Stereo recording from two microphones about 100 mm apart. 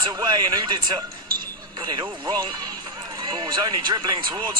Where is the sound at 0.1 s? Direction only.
45° right (ahead or behind).